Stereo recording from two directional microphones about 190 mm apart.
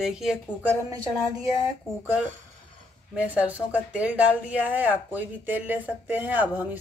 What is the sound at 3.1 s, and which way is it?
Speech, 5° right (ahead or behind).